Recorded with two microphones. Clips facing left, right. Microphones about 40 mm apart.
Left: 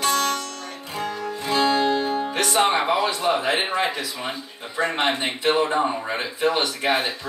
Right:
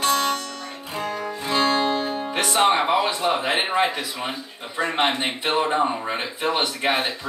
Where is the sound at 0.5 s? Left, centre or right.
Centre.